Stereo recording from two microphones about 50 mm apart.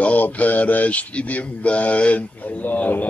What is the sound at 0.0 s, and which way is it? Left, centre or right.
Mantra, left.